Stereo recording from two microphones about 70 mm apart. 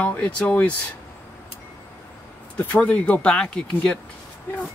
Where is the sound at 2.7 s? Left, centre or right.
Left.